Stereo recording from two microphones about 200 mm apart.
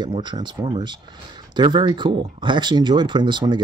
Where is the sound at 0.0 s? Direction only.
20° right (ahead or behind).